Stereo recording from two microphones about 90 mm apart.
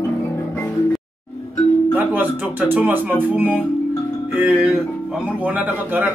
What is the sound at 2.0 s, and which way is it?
A man's voice, 20° right (ahead or behind).